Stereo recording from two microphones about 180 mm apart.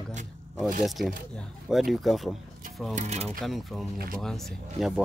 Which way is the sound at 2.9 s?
40° right (ahead or behind).